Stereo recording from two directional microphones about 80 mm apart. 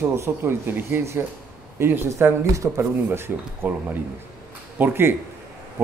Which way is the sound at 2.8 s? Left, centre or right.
Right.